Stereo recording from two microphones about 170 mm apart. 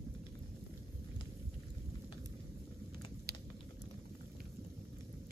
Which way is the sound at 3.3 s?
65° right (ahead or behind).